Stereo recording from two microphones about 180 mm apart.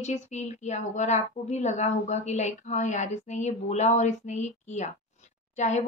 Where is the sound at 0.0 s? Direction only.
40° left (ahead or behind).